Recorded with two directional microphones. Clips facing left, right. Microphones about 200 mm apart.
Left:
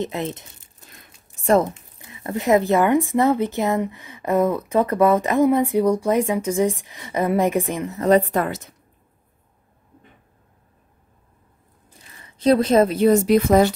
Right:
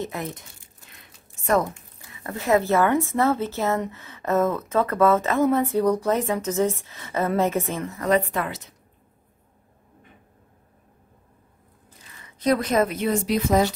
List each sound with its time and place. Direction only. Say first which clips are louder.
0.0 s speech: left 5 dB; 20° left (ahead or behind)
8.0 s a woman's voice: left 6 dB; 35° left (ahead or behind)
12.4 s a woman's voice: left 5 dB; 30° left (ahead or behind); by 13.7 s 60° left (ahead or behind)